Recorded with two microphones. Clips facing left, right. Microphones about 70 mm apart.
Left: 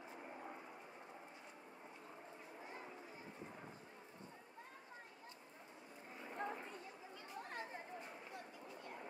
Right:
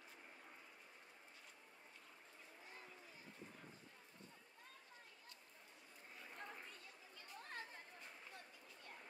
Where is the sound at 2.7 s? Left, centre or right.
Left.